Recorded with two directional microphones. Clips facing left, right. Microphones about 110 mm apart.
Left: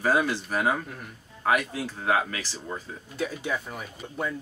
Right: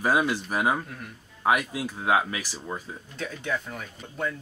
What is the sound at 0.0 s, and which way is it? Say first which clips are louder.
Speech: even; 15° right (ahead or behind).